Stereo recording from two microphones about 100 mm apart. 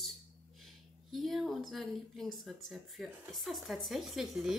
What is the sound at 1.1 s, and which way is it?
Speech, centre (ahead or behind).